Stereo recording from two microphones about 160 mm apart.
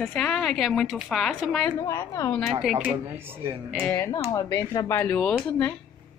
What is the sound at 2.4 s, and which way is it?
Speech, centre (ahead or behind).